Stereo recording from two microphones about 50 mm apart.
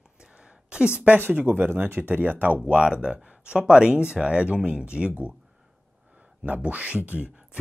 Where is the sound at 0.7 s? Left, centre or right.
Right.